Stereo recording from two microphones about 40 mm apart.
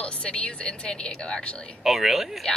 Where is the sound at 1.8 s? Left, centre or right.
Centre.